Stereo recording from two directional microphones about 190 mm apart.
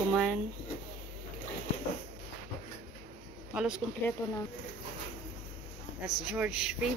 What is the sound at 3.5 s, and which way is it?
Speech, 5° right (ahead or behind).